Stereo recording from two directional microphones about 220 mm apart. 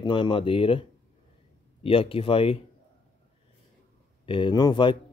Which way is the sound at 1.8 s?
25° left (ahead or behind).